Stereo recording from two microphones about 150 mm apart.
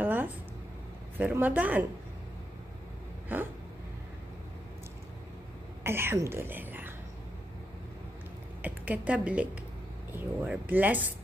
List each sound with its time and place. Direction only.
0.0 s a sound: 10° right (ahead or behind)
1.1 s speech: 10° right (ahead or behind)
3.3 s speech: 10° right (ahead or behind)
5.9 s speech: 15° right (ahead or behind)
8.6 s a woman's voice: 10° right (ahead or behind)